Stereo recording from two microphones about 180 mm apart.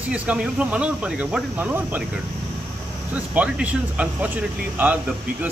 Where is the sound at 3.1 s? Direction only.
10° right (ahead or behind).